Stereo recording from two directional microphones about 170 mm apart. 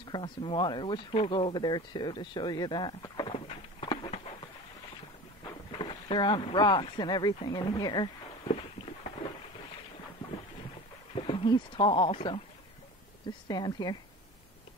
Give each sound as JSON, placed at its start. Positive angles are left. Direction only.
{"t": 0.1, "sound": "speech", "side_deg": 30}
{"t": 5.8, "sound": "speech", "side_deg": 30}
{"t": 11.1, "sound": "speech", "side_deg": 30}
{"t": 13.5, "sound": "speech", "side_deg": 25}